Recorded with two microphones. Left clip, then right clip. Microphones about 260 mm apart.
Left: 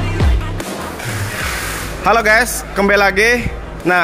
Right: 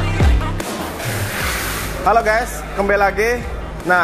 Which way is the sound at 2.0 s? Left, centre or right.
Left.